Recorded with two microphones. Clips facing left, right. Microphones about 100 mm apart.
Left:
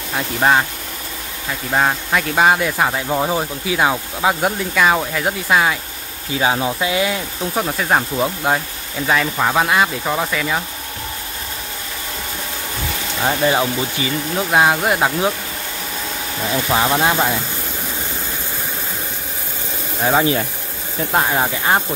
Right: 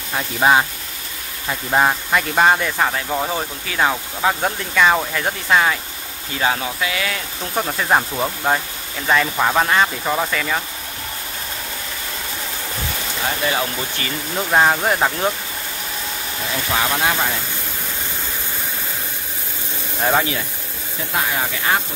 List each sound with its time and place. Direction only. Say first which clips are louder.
0.1 s speech: even; 5° right (ahead or behind)
6.3 s speech: left 3 dB; 15° left (ahead or behind)
7.5 s speech: even; 5° left (ahead or behind)
13.2 s speech: left 5 dB; 25° left (ahead or behind)
13.9 s speech: left 4 dB; 10° left (ahead or behind)
16.7 s speech: left 3 dB; 25° left (ahead or behind)
20.0 s speech: left 2 dB; 5° left (ahead or behind)
21.1 s speech: left 5 dB; 35° left (ahead or behind)